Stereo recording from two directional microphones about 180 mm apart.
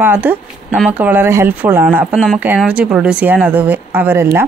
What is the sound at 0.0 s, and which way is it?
Speech, 10° right (ahead or behind).